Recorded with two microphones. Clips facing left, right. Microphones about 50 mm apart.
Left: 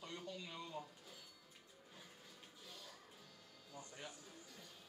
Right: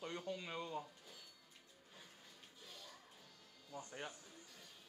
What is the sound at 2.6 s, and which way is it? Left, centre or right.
Music, centre.